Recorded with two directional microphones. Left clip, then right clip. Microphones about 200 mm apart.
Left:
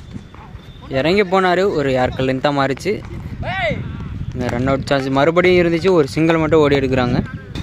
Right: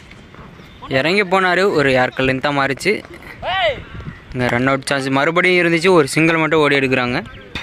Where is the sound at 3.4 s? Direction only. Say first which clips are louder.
Right 3 dB; 40° right (ahead or behind).